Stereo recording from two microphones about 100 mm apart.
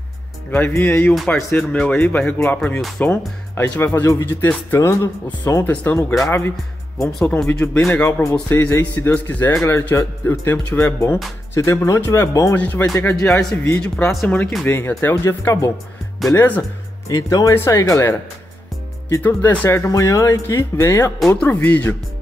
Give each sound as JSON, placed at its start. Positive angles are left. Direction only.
{"t": 0.5, "sound": "speech", "side_deg": 20}
{"t": 1.1, "sound": "speech", "side_deg": 5}
{"t": 1.5, "sound": "speech", "side_deg": 25}
{"t": 4.7, "sound": "speech", "side_deg": 30}
{"t": 5.6, "sound": "speech", "side_deg": 20}
{"t": 7.2, "sound": "speech", "side_deg": 5}
{"t": 7.4, "sound": "speech", "side_deg": 20}
{"t": 9.5, "sound": "speech", "side_deg": 30}
{"t": 12.5, "sound": "speech", "side_deg": 20}
{"t": 12.8, "sound": "speech", "side_deg": 30}
{"t": 13.1, "sound": "speech", "side_deg": 10}
{"t": 17.1, "sound": "speech", "side_deg": 35}
{"t": 19.2, "sound": "speech", "side_deg": 20}